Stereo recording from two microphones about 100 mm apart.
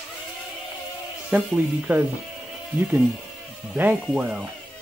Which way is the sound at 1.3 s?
15° right (ahead or behind).